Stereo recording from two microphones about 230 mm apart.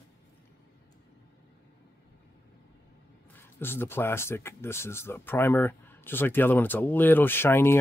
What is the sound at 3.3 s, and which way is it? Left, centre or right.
Speech, centre.